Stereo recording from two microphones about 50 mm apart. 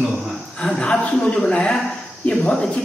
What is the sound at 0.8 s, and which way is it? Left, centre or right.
Speech, left.